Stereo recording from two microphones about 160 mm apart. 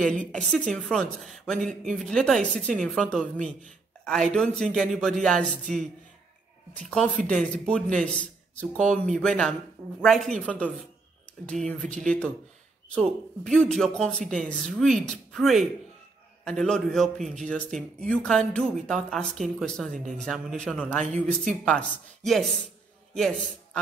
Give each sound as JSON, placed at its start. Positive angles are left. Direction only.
{"t": 0.5, "sound": "a man's voice", "side_deg": 5}
{"t": 7.2, "sound": "a man's voice", "side_deg": 5}
{"t": 13.4, "sound": "a man's voice", "side_deg": 5}